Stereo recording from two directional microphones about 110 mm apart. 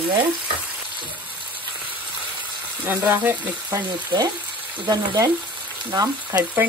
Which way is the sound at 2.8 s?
20° right (ahead or behind).